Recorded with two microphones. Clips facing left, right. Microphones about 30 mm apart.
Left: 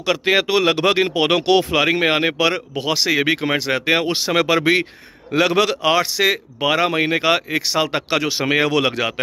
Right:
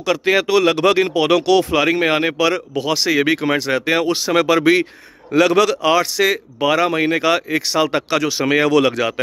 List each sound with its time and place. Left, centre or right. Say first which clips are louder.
0.0 s speech: right 1 dB; left